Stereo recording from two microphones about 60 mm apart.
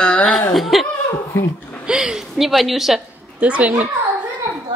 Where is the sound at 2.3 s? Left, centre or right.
Centre.